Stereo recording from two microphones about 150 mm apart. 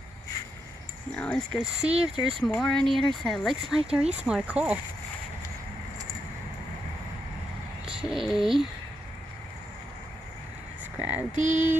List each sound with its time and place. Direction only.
1.1 s speech: 5° left (ahead or behind)
1.6 s speech: 5° right (ahead or behind)
8.1 s speech: centre (ahead or behind)
11.0 s speech: 10° right (ahead or behind)
11.3 s a sound: 55° right (ahead or behind)